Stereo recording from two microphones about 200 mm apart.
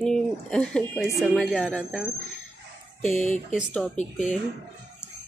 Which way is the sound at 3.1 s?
35° left (ahead or behind).